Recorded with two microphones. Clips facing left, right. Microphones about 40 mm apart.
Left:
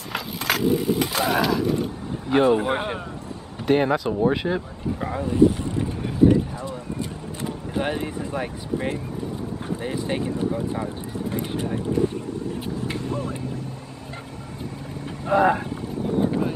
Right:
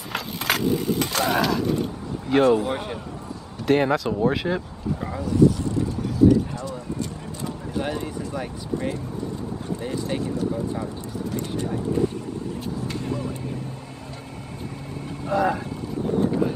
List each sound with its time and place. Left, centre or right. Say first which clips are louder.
0.1 s a sound: even; centre
2.5 s speech: left 1 dB; left
3.6 s speech: even; centre
4.1 s speech: left 1 dB; centre
5.2 s a sound: even; left
9.8 s speech: left 1 dB; left
15.2 s speech: left 4 dB; left
16.2 s vehicle: even; centre